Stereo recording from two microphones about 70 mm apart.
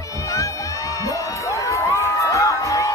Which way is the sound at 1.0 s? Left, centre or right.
Left.